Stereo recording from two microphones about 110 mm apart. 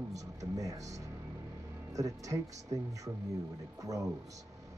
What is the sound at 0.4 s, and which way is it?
Music, 30° right (ahead or behind).